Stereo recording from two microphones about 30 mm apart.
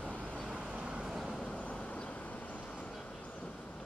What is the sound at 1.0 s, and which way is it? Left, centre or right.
Vehicle, centre.